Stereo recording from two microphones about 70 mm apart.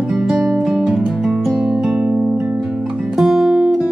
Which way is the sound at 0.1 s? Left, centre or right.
Centre.